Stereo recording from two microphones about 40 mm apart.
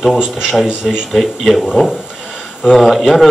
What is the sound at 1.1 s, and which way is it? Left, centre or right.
Speech, centre.